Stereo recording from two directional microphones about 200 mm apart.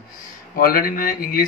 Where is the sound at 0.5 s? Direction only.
45° left (ahead or behind).